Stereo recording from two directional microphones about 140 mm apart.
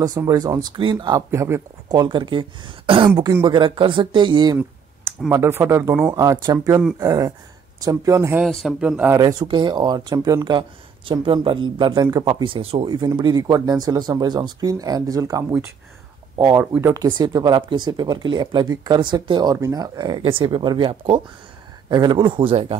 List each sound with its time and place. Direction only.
0.0 s speech: 25° right (ahead or behind)
5.3 s speech: 20° right (ahead or behind)
8.5 s speech: centre (ahead or behind)
9.2 s speech: 30° right (ahead or behind)
12.3 s speech: 40° right (ahead or behind)